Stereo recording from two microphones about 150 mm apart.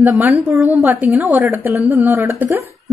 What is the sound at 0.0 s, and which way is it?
A woman's voice, 10° right (ahead or behind).